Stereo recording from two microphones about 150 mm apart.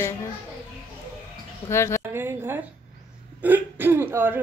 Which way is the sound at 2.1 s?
15° right (ahead or behind).